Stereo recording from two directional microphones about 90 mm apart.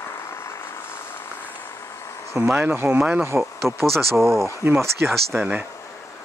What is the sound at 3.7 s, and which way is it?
Speech, 30° right (ahead or behind).